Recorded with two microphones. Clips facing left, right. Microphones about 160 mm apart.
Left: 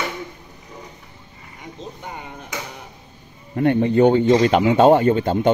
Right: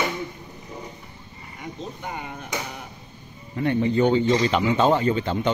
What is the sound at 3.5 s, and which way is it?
Speech, 50° left (ahead or behind).